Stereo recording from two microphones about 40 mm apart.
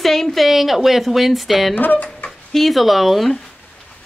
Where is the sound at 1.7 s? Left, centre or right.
Left.